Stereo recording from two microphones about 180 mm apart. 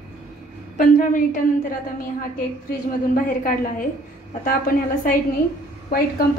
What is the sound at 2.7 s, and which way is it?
A woman's voice, 50° left (ahead or behind).